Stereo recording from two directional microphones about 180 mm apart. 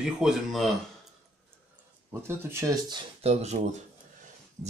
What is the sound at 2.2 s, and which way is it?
Speech, 20° right (ahead or behind).